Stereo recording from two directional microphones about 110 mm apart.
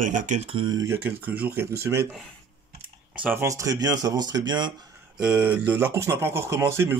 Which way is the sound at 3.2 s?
20° right (ahead or behind).